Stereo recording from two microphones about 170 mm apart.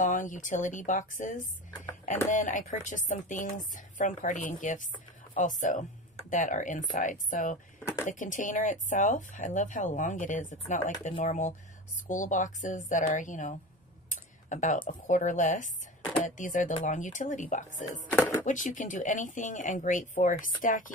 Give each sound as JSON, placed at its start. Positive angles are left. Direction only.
{"t": 0.0, "sound": "speech", "side_deg": 50}
{"t": 7.8, "sound": "a sound", "side_deg": 15}
{"t": 8.1, "sound": "speech", "side_deg": 50}